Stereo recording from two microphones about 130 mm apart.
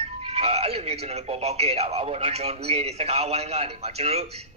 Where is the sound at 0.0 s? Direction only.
50° right (ahead or behind).